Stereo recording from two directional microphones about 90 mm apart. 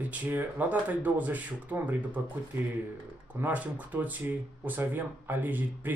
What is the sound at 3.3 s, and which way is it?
Speech, 15° right (ahead or behind).